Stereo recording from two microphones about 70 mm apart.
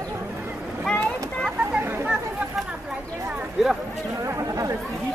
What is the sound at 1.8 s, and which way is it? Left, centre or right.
Chatter, right.